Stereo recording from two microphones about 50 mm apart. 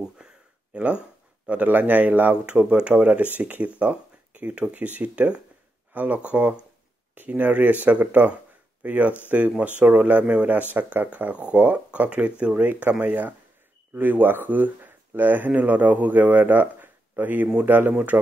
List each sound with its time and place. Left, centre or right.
0.2 s a sound: centre
0.7 s speech: right
1.5 s speech: right
2.5 s speech: right
3.8 s a sound: right
4.7 s speech: right
7.2 s speech: right
13.0 s speech: right